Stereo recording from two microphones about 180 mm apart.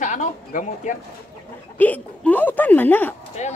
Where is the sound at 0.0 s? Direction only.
45° left (ahead or behind).